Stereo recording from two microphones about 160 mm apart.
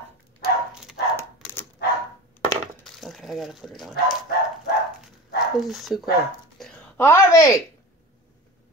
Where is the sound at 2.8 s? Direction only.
Centre (ahead or behind).